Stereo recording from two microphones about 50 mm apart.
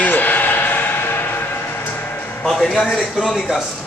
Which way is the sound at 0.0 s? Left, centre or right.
Left.